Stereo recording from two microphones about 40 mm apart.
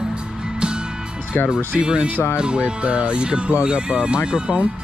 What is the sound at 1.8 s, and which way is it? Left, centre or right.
Speech, right.